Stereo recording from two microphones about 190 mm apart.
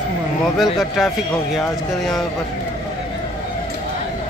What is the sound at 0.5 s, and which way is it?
Speech, centre (ahead or behind).